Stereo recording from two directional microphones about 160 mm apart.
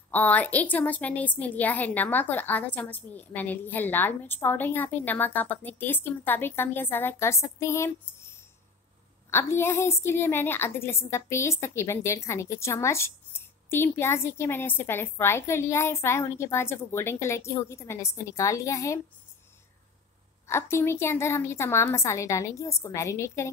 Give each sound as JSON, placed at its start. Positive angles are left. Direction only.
{"t": 0.1, "sound": "a woman's voice", "side_deg": 10}
{"t": 20.4, "sound": "a woman's voice", "side_deg": 15}